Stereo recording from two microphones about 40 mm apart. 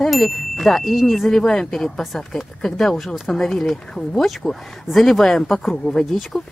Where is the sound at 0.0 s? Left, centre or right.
Centre.